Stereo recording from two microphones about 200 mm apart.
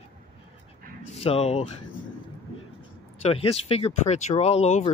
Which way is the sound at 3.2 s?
30° left (ahead or behind).